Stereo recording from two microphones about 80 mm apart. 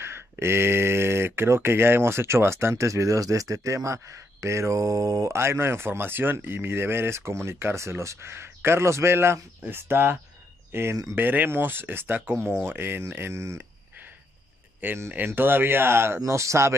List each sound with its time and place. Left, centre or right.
0.0 s speech: right
13.3 s speech: right
15.0 s speech: right